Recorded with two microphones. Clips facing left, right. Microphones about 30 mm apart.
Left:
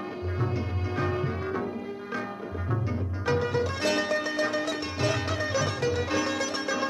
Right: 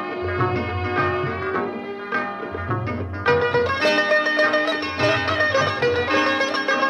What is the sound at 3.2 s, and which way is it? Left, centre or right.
Music, right.